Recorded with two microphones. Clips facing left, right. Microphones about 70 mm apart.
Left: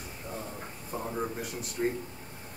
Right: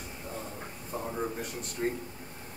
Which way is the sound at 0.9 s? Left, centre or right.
Centre.